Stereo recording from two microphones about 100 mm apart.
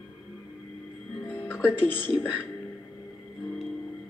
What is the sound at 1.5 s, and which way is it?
Speech, 15° left (ahead or behind).